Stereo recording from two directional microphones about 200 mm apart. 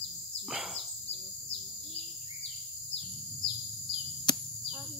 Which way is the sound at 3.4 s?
25° left (ahead or behind).